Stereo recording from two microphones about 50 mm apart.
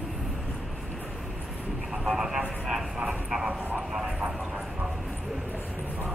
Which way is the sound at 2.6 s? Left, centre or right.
Centre.